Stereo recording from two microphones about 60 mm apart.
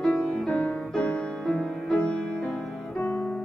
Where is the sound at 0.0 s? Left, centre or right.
Centre.